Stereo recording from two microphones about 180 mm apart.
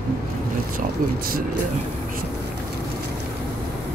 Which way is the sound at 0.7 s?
50° right (ahead or behind).